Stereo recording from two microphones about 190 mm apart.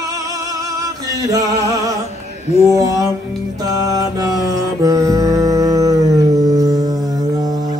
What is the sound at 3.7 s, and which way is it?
Mantra, 20° right (ahead or behind).